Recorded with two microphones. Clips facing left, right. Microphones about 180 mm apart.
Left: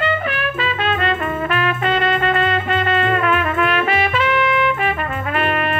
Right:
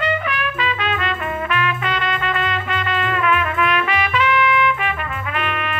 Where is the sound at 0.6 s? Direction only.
35° left (ahead or behind).